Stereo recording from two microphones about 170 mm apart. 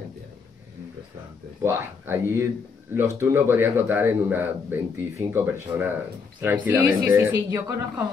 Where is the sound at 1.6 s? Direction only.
15° right (ahead or behind).